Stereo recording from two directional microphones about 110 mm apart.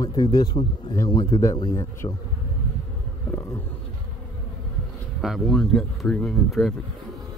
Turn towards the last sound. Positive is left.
turn(degrees=0)  # may be behind; listen again after turning